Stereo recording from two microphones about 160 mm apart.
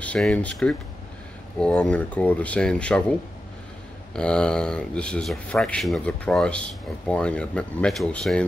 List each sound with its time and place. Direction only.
0.0 s speech: 5° left (ahead or behind)